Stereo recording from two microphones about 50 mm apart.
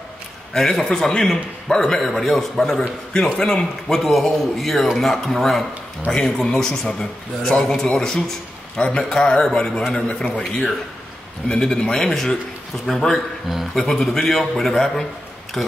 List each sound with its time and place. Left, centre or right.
0.5 s a man's voice: centre
6.3 s a man's voice: centre
8.7 s a man's voice: left
11.4 s a man's voice: centre
13.7 s a man's voice: centre